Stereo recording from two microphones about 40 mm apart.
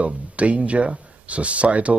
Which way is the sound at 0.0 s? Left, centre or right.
Right.